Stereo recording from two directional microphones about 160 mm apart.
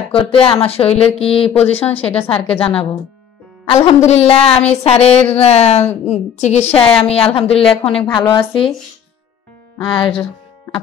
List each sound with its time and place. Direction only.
0.1 s a woman's voice: 35° left (ahead or behind)
1.7 s speech: 10° left (ahead or behind)
2.1 s a woman's voice: 35° left (ahead or behind)
3.6 s a woman's voice: 35° left (ahead or behind)
9.8 s speech: 30° left (ahead or behind)